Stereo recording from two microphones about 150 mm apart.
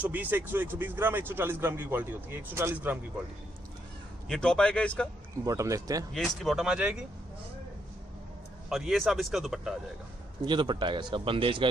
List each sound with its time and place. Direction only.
0.0 s speech: 10° right (ahead or behind)
4.3 s speech: 5° left (ahead or behind)
5.4 s speech: 20° right (ahead or behind)
6.1 s speech: centre (ahead or behind)
8.6 s speech: centre (ahead or behind)
10.4 s speech: 30° right (ahead or behind)